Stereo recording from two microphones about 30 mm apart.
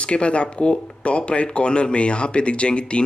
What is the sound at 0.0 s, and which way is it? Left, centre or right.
Speech, left.